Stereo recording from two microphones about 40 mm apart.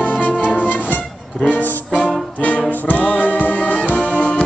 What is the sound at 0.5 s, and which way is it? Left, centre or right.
Music, left.